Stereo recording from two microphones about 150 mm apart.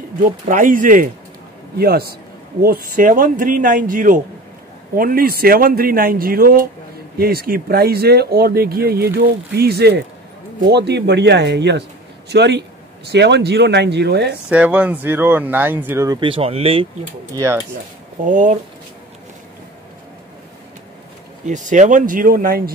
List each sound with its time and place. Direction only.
0.2 s a man's voice: 65° right (ahead or behind)
1.8 s speech: 90° right
2.6 s a man's voice: 75° right (ahead or behind); by 4.2 s 60° right (ahead or behind)
4.9 s speech: 75° right (ahead or behind)
7.2 s speech: 90° right
12.3 s speech: 90° right
14.5 s speech: 10° right (ahead or behind)
16.1 s speech: 35° right (ahead or behind)
17.4 s speech: 15° right (ahead or behind)
18.2 s a man's voice: 55° right (ahead or behind)
21.5 s a man's voice: 55° right (ahead or behind); by 22.6 s 70° right (ahead or behind)